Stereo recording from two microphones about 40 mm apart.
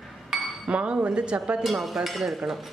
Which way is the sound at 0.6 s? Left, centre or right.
Right.